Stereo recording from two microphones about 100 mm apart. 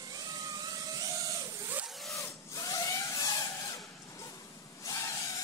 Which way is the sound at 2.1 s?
30° left (ahead or behind).